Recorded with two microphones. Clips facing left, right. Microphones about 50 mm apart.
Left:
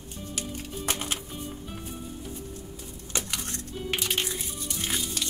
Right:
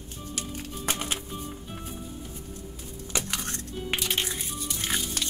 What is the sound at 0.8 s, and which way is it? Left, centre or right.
Music, right.